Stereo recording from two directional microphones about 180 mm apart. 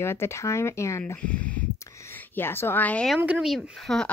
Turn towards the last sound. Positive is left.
turn(degrees=0)  # may be behind; listen again after turning